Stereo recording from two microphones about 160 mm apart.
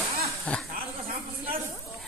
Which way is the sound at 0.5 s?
5° left (ahead or behind).